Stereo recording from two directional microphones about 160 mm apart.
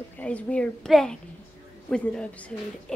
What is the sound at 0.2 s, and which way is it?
A woman's voice, 10° left (ahead or behind).